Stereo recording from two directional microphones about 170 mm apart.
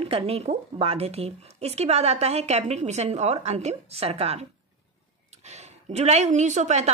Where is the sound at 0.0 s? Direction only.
35° right (ahead or behind).